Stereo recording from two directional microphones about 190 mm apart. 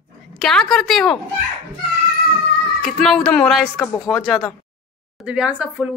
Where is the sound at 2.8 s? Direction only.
Centre (ahead or behind).